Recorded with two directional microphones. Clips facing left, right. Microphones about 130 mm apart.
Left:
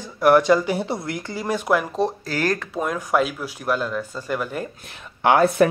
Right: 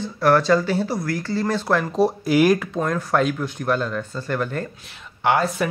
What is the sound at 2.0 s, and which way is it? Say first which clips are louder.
Speech: right 6 dB; 10° right (ahead or behind).